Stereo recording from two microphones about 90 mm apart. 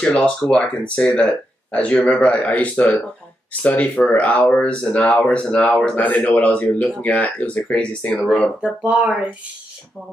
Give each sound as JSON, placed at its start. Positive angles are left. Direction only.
{"t": 0.0, "sound": "speech", "side_deg": 10}
{"t": 8.5, "sound": "speech", "side_deg": -15}